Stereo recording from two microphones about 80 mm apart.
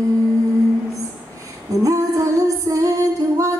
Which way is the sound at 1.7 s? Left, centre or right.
Right.